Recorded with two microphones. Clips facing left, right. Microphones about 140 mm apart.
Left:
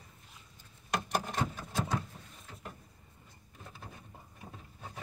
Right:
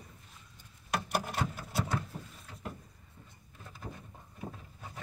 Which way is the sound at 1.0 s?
10° right (ahead or behind).